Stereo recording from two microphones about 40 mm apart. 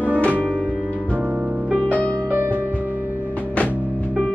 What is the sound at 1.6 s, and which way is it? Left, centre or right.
Music, right.